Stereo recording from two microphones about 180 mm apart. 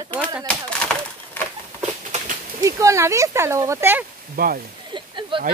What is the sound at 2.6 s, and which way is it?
Speech, 15° right (ahead or behind).